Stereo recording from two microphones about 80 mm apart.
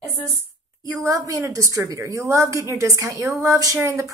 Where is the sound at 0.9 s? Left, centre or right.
Right.